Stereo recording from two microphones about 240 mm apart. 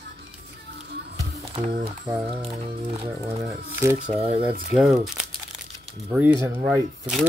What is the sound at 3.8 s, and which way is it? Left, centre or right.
Speech, centre.